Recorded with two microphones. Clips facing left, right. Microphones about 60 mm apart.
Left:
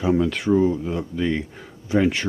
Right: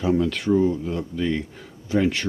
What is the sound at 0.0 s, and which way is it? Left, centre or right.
Speech, centre.